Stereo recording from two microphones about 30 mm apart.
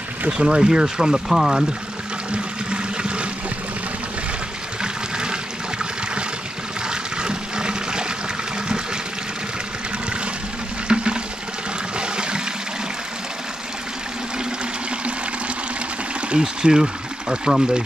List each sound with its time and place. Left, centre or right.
0.3 s speech: right; by 1.7 s centre
2.3 s toilet flush: right
4.8 s water: right
6.9 s toilet flush: right
10.9 s water: right
12.0 s toilet flush: right
16.3 s speech: right